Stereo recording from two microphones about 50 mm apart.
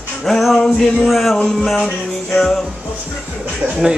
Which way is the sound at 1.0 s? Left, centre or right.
Centre.